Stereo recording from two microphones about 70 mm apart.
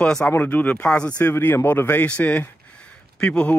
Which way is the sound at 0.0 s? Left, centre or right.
Centre.